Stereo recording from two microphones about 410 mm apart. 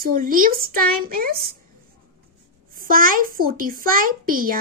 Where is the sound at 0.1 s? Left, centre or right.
Centre.